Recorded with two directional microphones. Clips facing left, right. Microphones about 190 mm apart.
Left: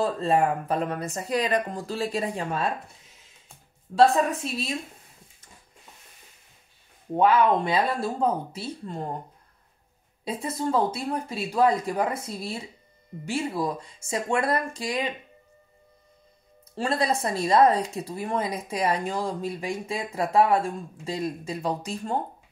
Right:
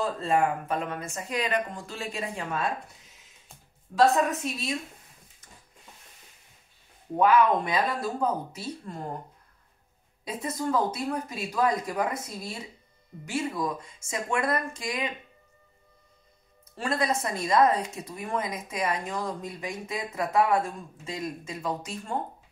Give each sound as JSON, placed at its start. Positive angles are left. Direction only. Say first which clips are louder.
{"t": 0.0, "sound": "speech", "louder": "left 3 dB", "side_deg": 35}
{"t": 3.9, "sound": "speech", "louder": "left 2 dB", "side_deg": 30}
{"t": 7.2, "sound": "speech", "louder": "left 1 dB", "side_deg": 30}
{"t": 10.2, "sound": "speech", "louder": "left 2 dB", "side_deg": 30}
{"t": 16.7, "sound": "speech", "louder": "left 2 dB", "side_deg": 30}